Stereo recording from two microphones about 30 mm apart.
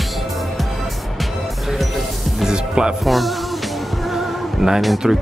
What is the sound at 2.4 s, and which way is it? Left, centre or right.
Music, right.